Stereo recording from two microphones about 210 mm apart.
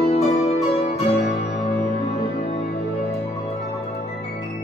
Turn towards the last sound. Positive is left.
turn(degrees=30)  # may be behind; listen again after turning